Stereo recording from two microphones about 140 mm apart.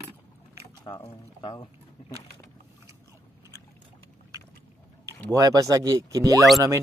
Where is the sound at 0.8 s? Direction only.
35° left (ahead or behind).